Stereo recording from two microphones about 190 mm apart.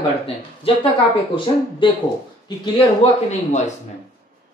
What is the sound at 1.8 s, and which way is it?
A man's voice, 25° left (ahead or behind).